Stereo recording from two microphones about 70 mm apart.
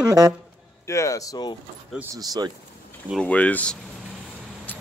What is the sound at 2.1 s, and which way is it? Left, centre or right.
Speech, right.